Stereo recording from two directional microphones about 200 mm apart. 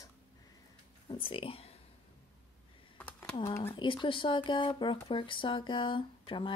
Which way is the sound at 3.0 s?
5° left (ahead or behind).